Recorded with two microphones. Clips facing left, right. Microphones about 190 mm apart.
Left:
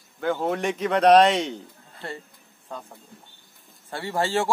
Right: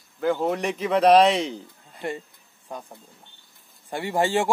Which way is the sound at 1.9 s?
15° right (ahead or behind).